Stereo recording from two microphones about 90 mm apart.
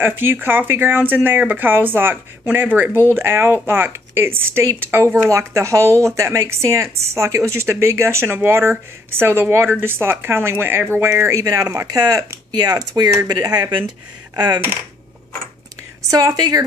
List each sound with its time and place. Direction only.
0.0 s a woman's voice: 25° right (ahead or behind); by 14.6 s 50° right (ahead or behind)
16.1 s a woman's voice: 45° right (ahead or behind)